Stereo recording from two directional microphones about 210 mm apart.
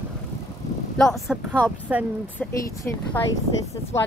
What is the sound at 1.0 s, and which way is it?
A woman's voice, centre (ahead or behind).